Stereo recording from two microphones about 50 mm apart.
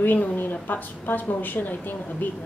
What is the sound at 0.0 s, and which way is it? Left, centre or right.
A woman's voice, left.